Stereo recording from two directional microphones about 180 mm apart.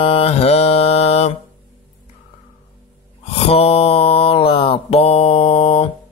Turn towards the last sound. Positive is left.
turn(degrees=35)  # may be behind; listen again after turning